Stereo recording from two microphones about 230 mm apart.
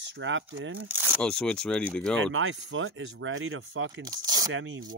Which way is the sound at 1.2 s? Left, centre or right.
Centre.